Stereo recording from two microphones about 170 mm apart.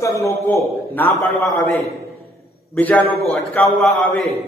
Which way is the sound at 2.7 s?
10° left (ahead or behind).